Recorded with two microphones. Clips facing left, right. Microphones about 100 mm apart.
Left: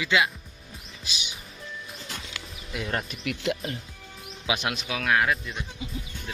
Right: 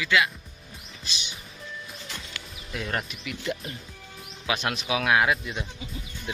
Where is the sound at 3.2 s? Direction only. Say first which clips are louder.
Left 3 dB; 90° left.